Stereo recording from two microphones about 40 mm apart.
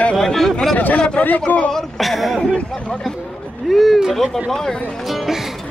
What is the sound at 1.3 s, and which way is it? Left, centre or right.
Speech, left.